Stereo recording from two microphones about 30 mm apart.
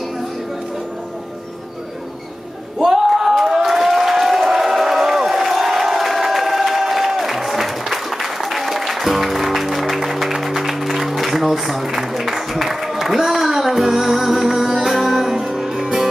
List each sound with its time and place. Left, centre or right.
2.9 s a sound: centre
3.5 s crowd: centre
15.6 s music: centre